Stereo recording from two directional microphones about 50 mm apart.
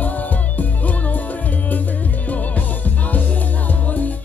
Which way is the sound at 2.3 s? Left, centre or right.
Left.